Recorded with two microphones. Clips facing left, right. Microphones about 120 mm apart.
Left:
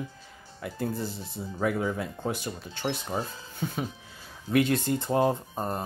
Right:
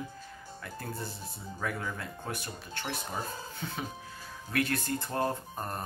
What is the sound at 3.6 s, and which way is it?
Speech, 15° left (ahead or behind).